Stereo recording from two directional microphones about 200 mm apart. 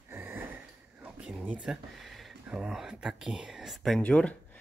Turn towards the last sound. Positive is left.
turn(degrees=5)  # may be behind; listen again after turning